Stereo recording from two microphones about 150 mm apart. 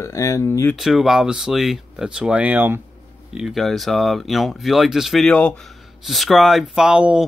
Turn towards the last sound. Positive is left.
turn(degrees=-5)  # may be behind; listen again after turning